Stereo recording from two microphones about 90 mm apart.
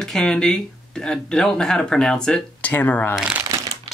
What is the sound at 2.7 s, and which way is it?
Speech, 20° left (ahead or behind).